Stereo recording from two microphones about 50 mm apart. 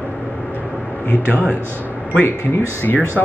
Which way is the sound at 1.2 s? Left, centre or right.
Right.